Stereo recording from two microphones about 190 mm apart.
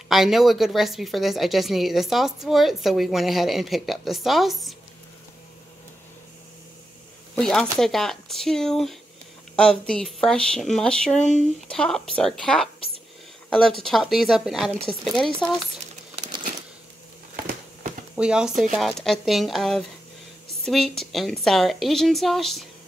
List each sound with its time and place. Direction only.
0.1 s a woman's voice: centre (ahead or behind)
7.3 s a woman's voice: 5° left (ahead or behind)
11.1 s speech: 40° left (ahead or behind)
11.6 s a woman's voice: 5° left (ahead or behind)
13.8 s a woman's voice: centre (ahead or behind)
16.2 s a sound: 25° right (ahead or behind)
18.1 s a woman's voice: 5° right (ahead or behind)